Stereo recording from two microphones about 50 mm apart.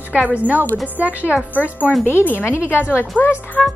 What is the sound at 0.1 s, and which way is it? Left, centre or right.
Speech, right.